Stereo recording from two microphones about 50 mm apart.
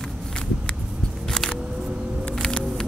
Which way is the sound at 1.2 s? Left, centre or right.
Centre.